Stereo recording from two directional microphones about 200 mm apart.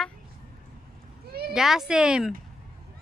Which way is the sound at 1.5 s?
Centre (ahead or behind).